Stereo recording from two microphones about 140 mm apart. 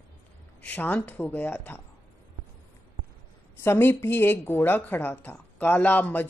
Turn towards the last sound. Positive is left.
turn(degrees=15)  # may be behind; listen again after turning